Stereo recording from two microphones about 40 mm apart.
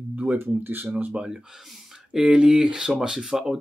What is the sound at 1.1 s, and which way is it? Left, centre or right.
Speech, right.